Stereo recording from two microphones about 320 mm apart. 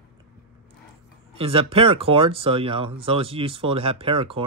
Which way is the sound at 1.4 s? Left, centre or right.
Centre.